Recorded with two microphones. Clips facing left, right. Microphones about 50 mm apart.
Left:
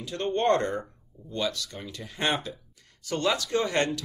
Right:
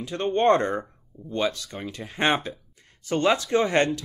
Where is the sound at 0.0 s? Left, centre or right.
Right.